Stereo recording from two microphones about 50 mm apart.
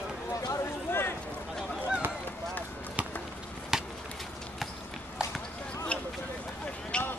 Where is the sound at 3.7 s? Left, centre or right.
Centre.